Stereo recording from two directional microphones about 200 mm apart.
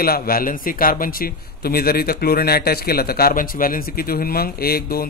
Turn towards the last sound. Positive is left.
turn(degrees=50)  # may be behind; listen again after turning